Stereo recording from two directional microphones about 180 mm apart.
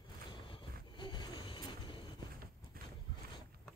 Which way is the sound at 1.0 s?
25° left (ahead or behind).